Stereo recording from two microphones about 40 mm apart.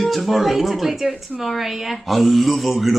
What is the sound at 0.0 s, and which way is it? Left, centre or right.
A woman's voice, centre.